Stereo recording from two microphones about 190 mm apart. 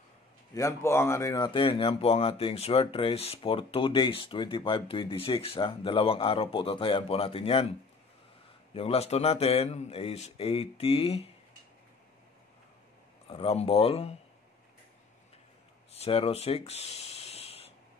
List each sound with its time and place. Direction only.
0.6 s speech: 15° left (ahead or behind)
8.7 s speech: 30° left (ahead or behind)
13.3 s speech: 30° left (ahead or behind)
15.9 s speech: 30° left (ahead or behind)